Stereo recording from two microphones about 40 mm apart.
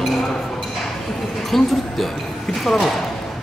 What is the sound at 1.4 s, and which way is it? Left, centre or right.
Speech, centre.